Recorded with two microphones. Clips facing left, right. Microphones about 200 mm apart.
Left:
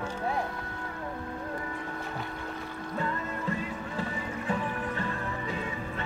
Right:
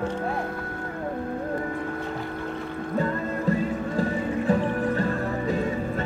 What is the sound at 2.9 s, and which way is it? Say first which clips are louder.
Music: right 7 dB; 40° right (ahead or behind).